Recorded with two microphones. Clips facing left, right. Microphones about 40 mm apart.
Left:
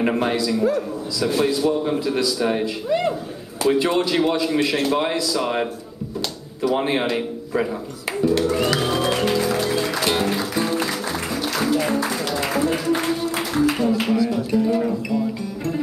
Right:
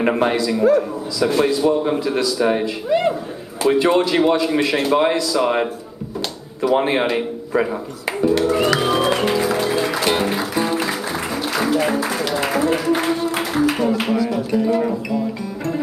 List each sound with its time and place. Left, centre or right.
0.0 s a man's voice: centre
8.2 s music: centre
12.9 s a man's voice: centre